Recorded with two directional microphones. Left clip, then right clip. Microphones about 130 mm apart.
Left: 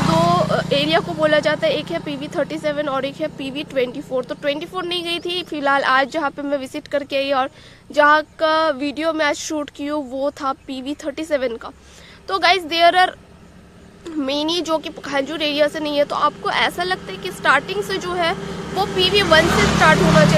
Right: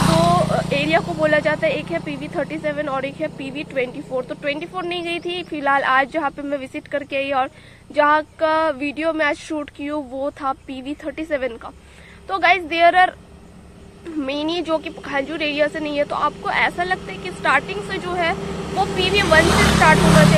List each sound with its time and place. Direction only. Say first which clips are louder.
0.3 s vehicle: left 1 dB; 45° left (ahead or behind)
1.2 s speech: left 2 dB; 40° left (ahead or behind)
14.2 s a woman's voice: left 2 dB; 40° left (ahead or behind)
18.4 s speech: right 1 dB; 35° right (ahead or behind)
18.9 s a woman's voice: left 2 dB; 40° left (ahead or behind)
19.4 s speech: right 1 dB; 75° right (ahead or behind)